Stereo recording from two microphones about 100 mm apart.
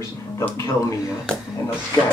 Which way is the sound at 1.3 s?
10° left (ahead or behind).